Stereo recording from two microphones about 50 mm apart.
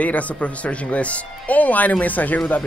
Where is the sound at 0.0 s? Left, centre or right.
Left.